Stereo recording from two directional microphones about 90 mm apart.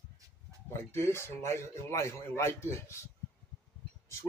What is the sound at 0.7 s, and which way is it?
Speech, 30° left (ahead or behind).